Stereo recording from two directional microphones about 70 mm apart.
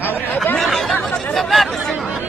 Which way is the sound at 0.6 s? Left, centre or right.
Centre.